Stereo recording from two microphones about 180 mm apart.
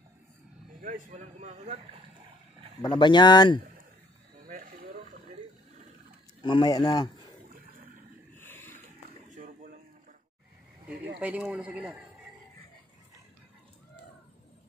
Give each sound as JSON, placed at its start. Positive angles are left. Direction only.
{"t": 0.7, "sound": "speech", "side_deg": -45}
{"t": 2.8, "sound": "speech", "side_deg": 25}
{"t": 4.5, "sound": "a sound", "side_deg": -50}
{"t": 6.4, "sound": "speech", "side_deg": 25}
{"t": 8.4, "sound": "a sound", "side_deg": 10}
{"t": 11.1, "sound": "speech", "side_deg": -5}